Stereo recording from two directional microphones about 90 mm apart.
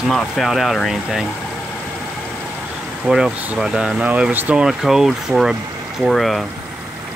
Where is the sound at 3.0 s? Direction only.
5° right (ahead or behind).